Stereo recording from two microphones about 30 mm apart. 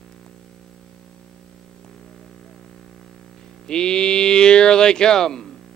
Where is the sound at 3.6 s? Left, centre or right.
Left.